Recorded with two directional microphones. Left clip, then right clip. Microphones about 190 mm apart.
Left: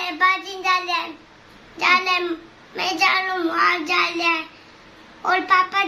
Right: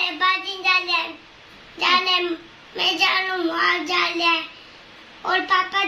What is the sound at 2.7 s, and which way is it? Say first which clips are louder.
A child's voice: even; 15° left (ahead or behind).